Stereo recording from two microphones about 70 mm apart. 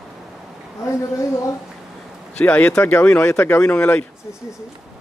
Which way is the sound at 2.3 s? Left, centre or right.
Left.